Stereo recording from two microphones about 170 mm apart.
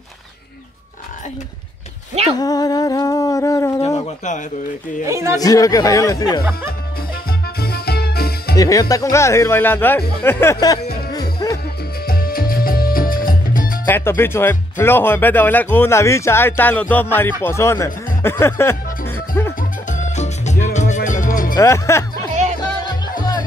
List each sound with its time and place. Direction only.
2.3 s humming: 20° left (ahead or behind)
3.8 s bird: 40° left (ahead or behind)
5.0 s a man's voice: 15° right (ahead or behind)
5.4 s speech: 20° left (ahead or behind)
7.2 s music: 65° left (ahead or behind)
8.5 s speech: 20° left (ahead or behind)
11.1 s music: 25° left (ahead or behind)
12.1 s music: 60° left (ahead or behind)
13.8 s speech: 15° left (ahead or behind)
19.9 s music: 45° left (ahead or behind)
21.5 s speech: 15° left (ahead or behind)
22.3 s music: 45° right (ahead or behind)